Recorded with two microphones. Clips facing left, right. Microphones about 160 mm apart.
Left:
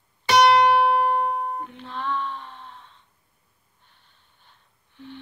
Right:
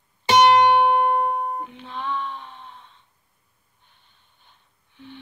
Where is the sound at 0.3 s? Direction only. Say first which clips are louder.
Right 1 dB; 25° right (ahead or behind).